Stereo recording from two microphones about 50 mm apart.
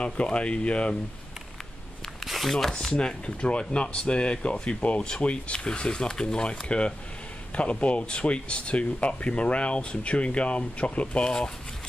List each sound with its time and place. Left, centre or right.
0.0 s speech: left
2.2 s speech: centre; by 5.6 s left
5.6 s speech: centre